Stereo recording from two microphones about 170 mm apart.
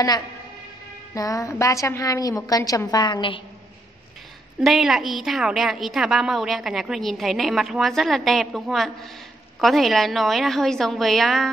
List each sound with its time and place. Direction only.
1.1 s a woman's voice: 20° left (ahead or behind)
4.6 s a woman's voice: centre (ahead or behind)